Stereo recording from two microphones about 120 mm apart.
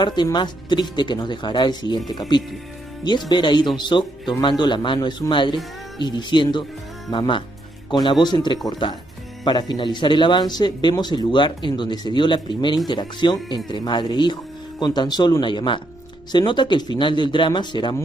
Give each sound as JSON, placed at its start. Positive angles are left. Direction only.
{"t": 0.0, "sound": "speech", "side_deg": 40}